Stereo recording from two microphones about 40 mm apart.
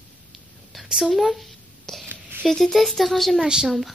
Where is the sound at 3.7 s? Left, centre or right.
Centre.